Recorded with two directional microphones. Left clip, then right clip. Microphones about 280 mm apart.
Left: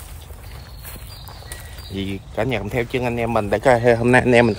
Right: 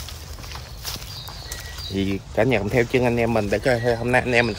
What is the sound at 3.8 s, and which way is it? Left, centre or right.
Speech, left.